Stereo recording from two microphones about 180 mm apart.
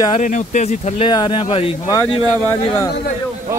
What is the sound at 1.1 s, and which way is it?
Speech, 25° left (ahead or behind).